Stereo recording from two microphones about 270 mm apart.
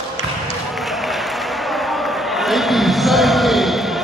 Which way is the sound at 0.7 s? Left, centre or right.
Centre.